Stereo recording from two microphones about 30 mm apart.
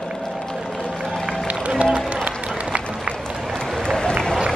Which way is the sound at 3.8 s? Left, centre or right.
Left.